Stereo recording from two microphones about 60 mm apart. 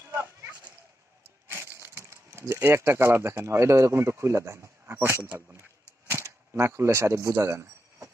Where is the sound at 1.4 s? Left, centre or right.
Right.